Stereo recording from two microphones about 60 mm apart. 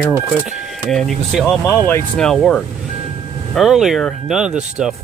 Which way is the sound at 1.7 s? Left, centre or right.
Left.